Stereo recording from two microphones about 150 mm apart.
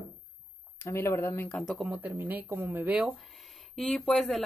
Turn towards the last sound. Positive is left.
turn(degrees=0)  # may be behind; listen again after turning